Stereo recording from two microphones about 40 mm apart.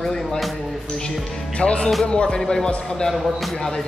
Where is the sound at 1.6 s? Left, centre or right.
Left.